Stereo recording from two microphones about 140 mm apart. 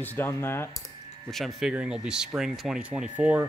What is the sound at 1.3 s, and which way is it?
Speech, centre (ahead or behind).